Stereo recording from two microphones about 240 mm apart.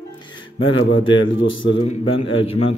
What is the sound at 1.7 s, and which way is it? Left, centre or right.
A man's voice, left.